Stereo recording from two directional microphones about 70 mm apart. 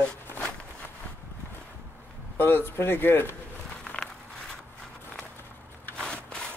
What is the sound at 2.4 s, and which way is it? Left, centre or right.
Speech, left.